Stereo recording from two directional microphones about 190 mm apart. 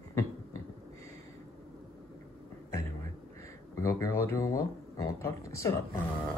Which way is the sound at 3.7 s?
15° left (ahead or behind).